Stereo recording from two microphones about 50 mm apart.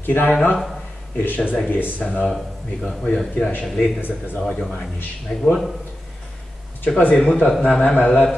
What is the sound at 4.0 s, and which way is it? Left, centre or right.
Speech, left.